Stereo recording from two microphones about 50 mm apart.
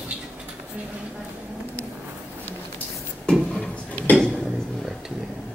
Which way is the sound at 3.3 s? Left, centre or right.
Centre.